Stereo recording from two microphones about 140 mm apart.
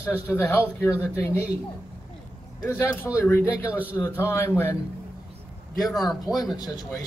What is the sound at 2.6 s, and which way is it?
A man's voice, 15° left (ahead or behind).